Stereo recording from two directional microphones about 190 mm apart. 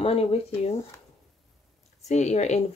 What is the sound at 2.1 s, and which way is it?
Speech, 35° left (ahead or behind).